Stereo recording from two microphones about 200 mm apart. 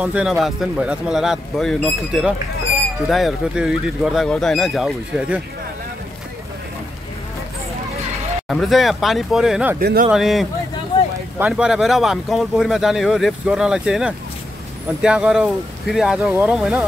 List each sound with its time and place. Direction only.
0.0 s speech: 5° right (ahead or behind)
8.5 s speech: centre (ahead or behind)
9.8 s speech: 50° right (ahead or behind)
10.1 s speech: centre (ahead or behind)